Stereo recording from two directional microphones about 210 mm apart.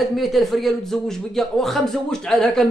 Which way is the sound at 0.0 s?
Centre (ahead or behind).